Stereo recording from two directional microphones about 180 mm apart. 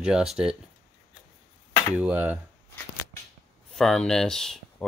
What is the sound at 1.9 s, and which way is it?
Speech, 10° right (ahead or behind).